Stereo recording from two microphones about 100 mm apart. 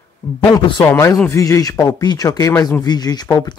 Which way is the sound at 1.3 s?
35° left (ahead or behind).